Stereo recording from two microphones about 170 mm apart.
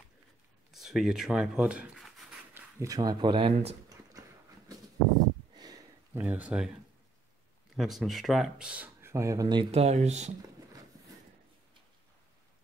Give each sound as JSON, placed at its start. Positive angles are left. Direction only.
{"t": 0.7, "sound": "speech", "side_deg": 0}
{"t": 2.5, "sound": "speech", "side_deg": -20}
{"t": 5.5, "sound": "a sound", "side_deg": -25}
{"t": 6.1, "sound": "speech", "side_deg": -10}
{"t": 7.7, "sound": "speech", "side_deg": 0}
{"t": 9.7, "sound": "speech", "side_deg": -40}